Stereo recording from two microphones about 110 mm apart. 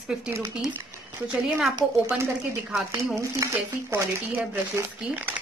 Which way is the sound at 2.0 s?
25° right (ahead or behind).